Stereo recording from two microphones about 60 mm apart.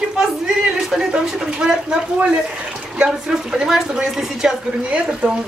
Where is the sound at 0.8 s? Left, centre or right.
Centre.